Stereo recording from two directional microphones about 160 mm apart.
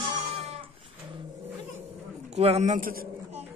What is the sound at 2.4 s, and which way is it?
Speech, 40° right (ahead or behind).